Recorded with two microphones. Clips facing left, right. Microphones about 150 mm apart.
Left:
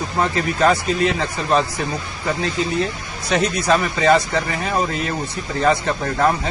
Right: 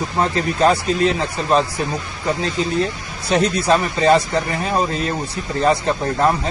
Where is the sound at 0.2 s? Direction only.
30° right (ahead or behind).